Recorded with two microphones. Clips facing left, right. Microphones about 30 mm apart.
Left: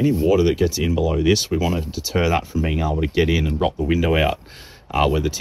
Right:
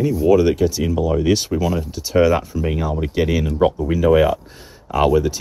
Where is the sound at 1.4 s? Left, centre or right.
Left.